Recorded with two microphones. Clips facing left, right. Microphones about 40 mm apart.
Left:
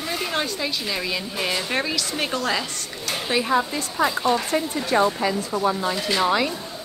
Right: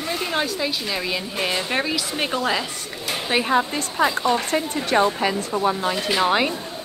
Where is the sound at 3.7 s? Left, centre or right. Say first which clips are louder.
Right 2 dB; right.